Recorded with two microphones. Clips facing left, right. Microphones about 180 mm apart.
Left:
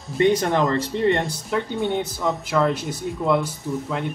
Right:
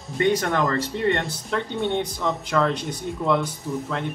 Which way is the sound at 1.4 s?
5° left (ahead or behind).